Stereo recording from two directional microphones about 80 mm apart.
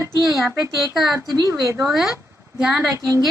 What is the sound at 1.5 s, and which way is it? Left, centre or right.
Speech, right.